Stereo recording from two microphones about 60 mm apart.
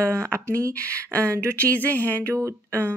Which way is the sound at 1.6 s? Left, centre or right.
Left.